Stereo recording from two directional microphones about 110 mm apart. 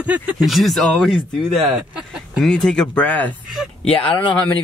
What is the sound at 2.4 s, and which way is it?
Speech, 5° left (ahead or behind).